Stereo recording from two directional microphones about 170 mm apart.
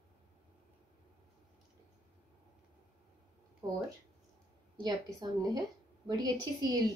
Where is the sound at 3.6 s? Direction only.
20° right (ahead or behind).